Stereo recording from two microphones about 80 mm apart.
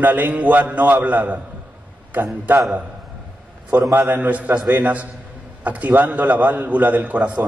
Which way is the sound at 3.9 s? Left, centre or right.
Right.